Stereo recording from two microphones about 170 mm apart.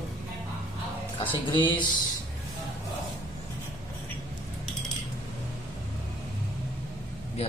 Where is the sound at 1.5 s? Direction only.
30° left (ahead or behind).